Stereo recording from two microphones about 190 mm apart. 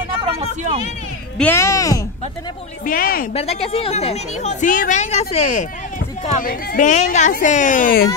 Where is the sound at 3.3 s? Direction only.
35° left (ahead or behind).